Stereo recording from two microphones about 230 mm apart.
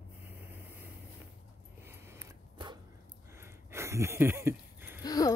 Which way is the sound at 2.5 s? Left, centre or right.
Centre.